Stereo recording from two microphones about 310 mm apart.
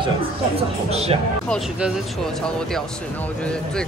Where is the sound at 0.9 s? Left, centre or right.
Centre.